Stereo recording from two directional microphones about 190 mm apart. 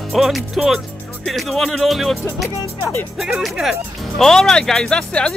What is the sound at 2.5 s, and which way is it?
Speech, 15° left (ahead or behind).